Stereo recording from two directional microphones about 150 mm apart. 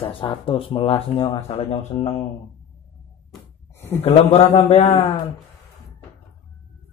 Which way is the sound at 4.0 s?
40° left (ahead or behind).